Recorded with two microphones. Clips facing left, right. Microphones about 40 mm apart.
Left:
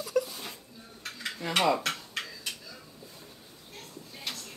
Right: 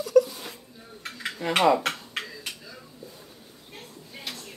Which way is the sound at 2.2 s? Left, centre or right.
Right.